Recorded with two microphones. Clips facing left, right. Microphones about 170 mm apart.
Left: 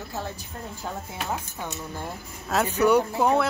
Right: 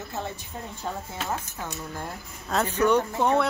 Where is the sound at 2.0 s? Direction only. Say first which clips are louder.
Left 2 dB; 5° left (ahead or behind).